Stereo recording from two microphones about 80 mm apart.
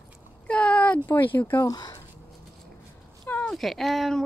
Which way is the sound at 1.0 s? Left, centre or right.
Left.